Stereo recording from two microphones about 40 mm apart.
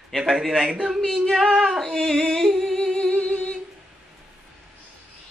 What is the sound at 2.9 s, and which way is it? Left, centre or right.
Humming, left.